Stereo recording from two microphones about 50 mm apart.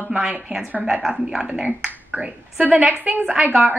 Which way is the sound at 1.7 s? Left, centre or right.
Right.